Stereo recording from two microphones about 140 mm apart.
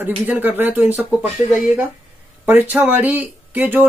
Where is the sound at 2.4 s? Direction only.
15° right (ahead or behind).